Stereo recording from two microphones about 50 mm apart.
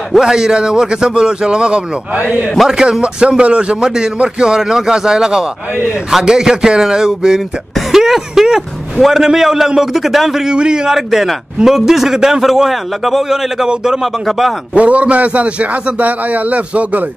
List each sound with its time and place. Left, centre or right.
0.2 s a man's voice: centre
10.5 s a man's voice: centre
14.7 s a man's voice: right